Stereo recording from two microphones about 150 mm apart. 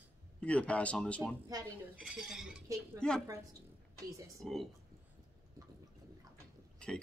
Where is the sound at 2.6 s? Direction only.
20° right (ahead or behind).